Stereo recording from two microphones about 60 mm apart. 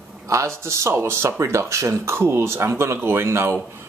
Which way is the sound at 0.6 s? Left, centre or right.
Right.